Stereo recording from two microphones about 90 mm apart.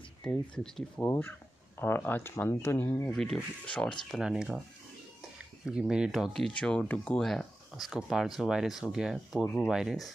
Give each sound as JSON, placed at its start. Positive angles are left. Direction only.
{"t": 0.2, "sound": "speech", "side_deg": 5}
{"t": 0.9, "sound": "speech", "side_deg": 20}
{"t": 3.1, "sound": "speech", "side_deg": 5}
{"t": 5.7, "sound": "speech", "side_deg": -10}
{"t": 6.3, "sound": "speech", "side_deg": 10}